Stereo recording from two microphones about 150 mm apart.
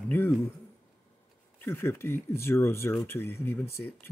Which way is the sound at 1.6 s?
15° left (ahead or behind).